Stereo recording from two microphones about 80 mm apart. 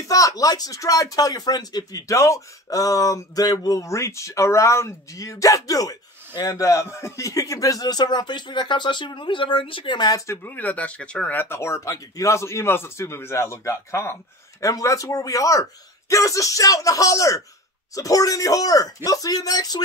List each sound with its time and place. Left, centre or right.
0.1 s speech: left
10.2 s a man's voice: left
10.5 s speech: left
11.4 s a man's voice: left